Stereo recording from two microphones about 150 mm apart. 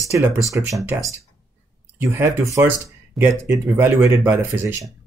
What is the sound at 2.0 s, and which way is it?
Speech, 15° right (ahead or behind).